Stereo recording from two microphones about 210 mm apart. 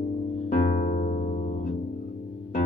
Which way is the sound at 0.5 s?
35° left (ahead or behind).